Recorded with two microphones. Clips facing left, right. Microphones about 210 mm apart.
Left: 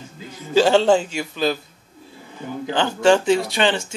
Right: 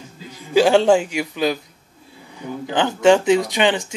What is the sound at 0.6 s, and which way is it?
Speech, 10° right (ahead or behind).